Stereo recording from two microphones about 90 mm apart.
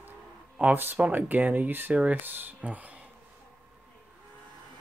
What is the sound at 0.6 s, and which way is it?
Speech, 20° right (ahead or behind).